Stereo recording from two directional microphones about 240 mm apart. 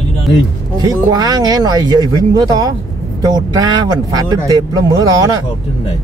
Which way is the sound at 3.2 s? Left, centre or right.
Centre.